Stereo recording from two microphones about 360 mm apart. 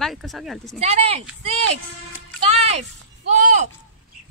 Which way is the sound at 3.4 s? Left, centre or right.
Centre.